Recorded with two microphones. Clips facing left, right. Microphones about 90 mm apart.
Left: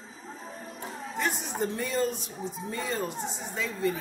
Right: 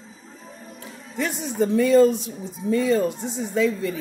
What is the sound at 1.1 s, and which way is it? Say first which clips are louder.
Speech: right 5 dB; 90° right.